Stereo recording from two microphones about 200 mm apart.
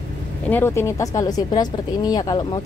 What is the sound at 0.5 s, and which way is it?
Speech, 10° left (ahead or behind).